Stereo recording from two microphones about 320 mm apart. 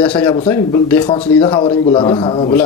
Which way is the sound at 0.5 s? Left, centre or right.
Centre.